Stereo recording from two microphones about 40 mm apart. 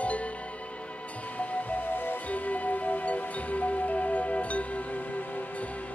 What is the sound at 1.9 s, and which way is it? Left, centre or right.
Music, left.